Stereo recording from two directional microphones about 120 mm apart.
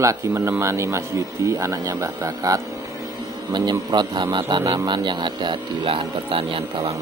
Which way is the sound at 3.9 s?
40° right (ahead or behind).